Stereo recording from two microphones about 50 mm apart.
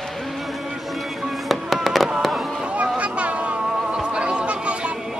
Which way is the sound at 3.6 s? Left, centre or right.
Centre.